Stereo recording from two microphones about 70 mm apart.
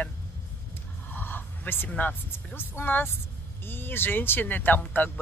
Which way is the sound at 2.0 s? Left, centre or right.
Left.